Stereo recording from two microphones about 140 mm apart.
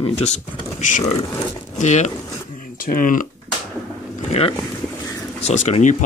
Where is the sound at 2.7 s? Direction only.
80° left.